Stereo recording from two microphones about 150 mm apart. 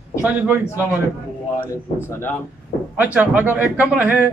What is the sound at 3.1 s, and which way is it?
Speech, 10° right (ahead or behind).